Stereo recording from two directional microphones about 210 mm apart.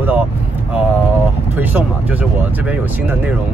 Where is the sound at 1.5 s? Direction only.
10° right (ahead or behind).